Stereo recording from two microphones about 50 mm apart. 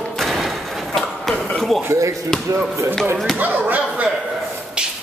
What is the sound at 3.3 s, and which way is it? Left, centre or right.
Speech, right.